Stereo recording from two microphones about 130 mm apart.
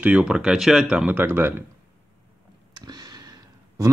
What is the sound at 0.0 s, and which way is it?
Speech, 10° right (ahead or behind).